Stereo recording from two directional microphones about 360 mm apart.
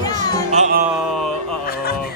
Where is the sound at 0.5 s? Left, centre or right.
Centre.